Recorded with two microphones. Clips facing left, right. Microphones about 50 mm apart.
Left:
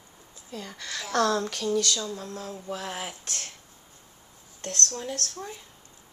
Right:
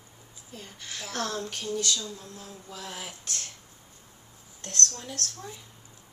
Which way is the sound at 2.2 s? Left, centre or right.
Left.